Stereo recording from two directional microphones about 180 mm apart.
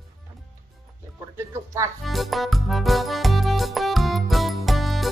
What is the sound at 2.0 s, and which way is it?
Music, centre (ahead or behind).